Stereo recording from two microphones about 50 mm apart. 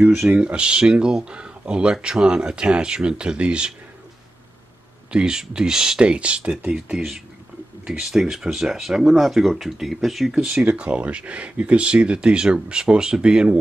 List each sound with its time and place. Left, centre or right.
0.4 s speech: right
5.1 s speech: centre
6.9 s speech: centre
10.3 s speech: centre
10.7 s speech: right